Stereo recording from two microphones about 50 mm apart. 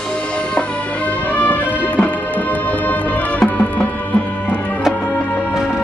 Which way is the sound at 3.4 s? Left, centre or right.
Left.